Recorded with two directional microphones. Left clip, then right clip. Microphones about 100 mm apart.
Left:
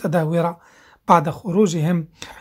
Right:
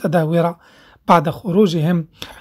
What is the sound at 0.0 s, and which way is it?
A woman's voice, 35° right (ahead or behind).